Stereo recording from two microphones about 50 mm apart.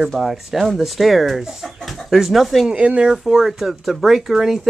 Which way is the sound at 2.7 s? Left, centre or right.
Right.